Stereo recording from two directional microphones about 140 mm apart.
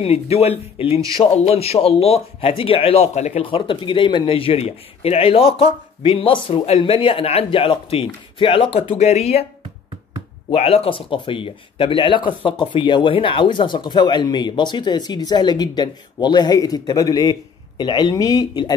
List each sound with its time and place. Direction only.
0.0 s speech: 45° left (ahead or behind)
3.4 s speech: 40° left (ahead or behind)
8.9 s speech: 50° left (ahead or behind)
10.5 s speech: 45° left (ahead or behind); by 18.8 s 30° left (ahead or behind)